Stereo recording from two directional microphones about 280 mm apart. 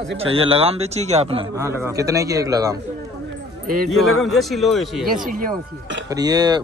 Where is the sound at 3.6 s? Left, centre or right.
Right.